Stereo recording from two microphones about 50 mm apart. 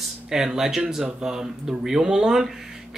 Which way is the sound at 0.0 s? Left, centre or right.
Centre.